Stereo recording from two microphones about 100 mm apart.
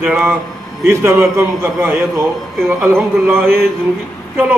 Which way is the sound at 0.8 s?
25° right (ahead or behind).